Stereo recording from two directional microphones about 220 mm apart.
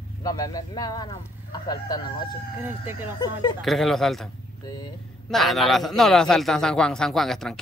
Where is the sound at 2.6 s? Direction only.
10° right (ahead or behind).